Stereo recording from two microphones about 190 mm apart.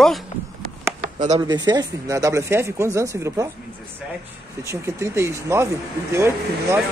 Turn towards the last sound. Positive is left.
turn(degrees=-15)  # may be behind; listen again after turning